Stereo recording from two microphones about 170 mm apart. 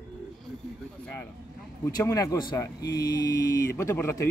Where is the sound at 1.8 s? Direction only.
20° left (ahead or behind).